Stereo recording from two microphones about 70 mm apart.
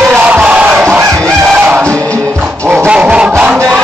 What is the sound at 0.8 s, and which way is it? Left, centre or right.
Fowl, right.